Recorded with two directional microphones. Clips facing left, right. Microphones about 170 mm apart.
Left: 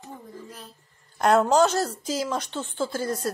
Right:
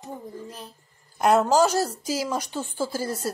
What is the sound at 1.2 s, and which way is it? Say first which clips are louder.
Speech: even; 5° right (ahead or behind).